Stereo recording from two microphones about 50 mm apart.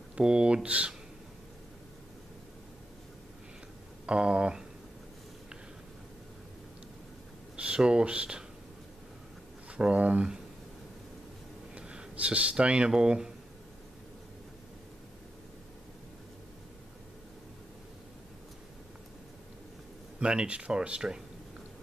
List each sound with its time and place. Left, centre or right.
0.1 s speech: centre
4.0 s speech: right
7.5 s speech: right
9.8 s speech: right
11.7 s speech: right
20.2 s speech: right